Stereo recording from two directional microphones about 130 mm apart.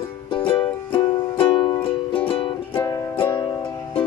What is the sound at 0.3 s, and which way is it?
Music, 40° left (ahead or behind).